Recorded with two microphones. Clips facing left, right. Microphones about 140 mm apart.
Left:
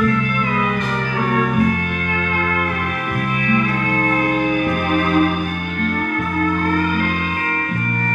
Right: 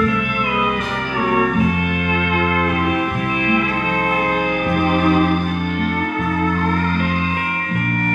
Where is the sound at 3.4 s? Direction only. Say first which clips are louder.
Left 1 dB; 15° right (ahead or behind).